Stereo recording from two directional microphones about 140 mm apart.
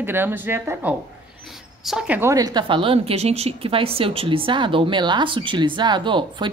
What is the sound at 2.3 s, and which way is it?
A woman's voice, 30° right (ahead or behind).